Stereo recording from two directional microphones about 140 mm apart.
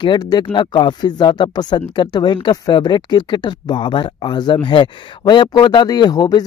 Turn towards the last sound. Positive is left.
turn(degrees=30)  # may be behind; listen again after turning